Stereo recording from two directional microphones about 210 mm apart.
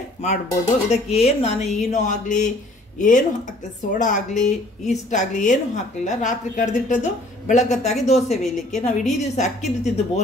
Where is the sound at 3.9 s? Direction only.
35° left (ahead or behind).